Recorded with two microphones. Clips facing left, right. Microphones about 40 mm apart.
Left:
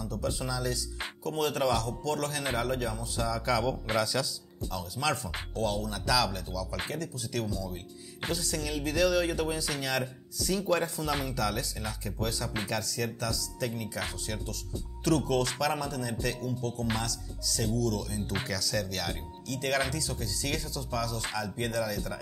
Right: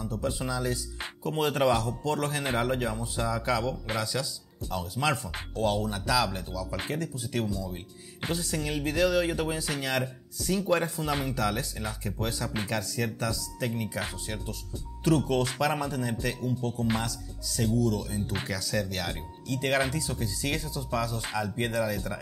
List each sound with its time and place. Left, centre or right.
0.0 s speech: right
3.6 s speech: centre
4.7 s speech: centre
6.0 s speech: centre